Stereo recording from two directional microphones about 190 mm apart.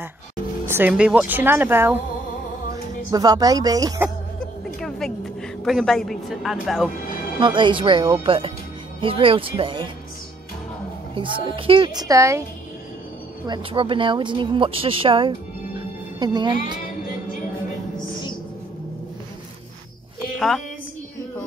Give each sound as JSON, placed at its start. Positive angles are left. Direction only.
{"t": 0.7, "sound": "speech", "side_deg": -10}
{"t": 3.1, "sound": "speech", "side_deg": -20}
{"t": 4.7, "sound": "a sound", "side_deg": 5}
{"t": 7.1, "sound": "music", "side_deg": 50}
{"t": 7.3, "sound": "speech", "side_deg": -25}
{"t": 11.1, "sound": "speech", "side_deg": -25}
{"t": 13.5, "sound": "speech", "side_deg": -25}
{"t": 20.3, "sound": "speech", "side_deg": 0}